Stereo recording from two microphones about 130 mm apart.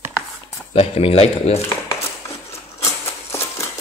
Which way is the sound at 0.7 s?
50° left (ahead or behind).